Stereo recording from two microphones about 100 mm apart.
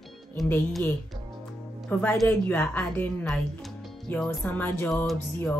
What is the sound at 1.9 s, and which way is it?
Speech, 15° left (ahead or behind).